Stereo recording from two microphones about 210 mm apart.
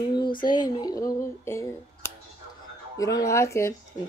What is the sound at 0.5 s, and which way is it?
Speech, 20° left (ahead or behind).